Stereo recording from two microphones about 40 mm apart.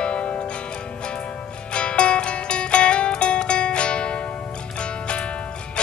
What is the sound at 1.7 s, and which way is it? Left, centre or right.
Music, left.